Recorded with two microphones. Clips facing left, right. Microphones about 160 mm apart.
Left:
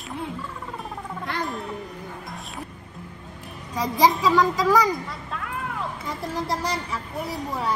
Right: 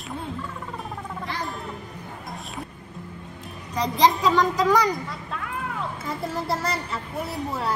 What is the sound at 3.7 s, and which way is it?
A child's voice, 10° left (ahead or behind).